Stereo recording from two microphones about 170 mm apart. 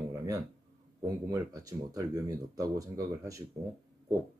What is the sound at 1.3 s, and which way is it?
Speech, 20° right (ahead or behind).